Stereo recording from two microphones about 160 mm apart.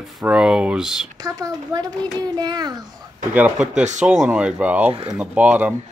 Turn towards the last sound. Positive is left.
turn(degrees=-10)  # may be behind; listen again after turning